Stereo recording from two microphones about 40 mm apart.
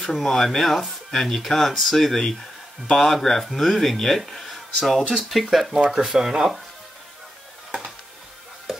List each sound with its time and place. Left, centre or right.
0.0 s speech: centre
8.7 s music: centre